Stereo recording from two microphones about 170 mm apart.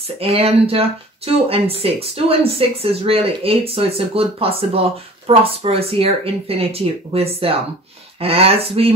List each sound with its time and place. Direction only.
0.2 s speech: 35° right (ahead or behind)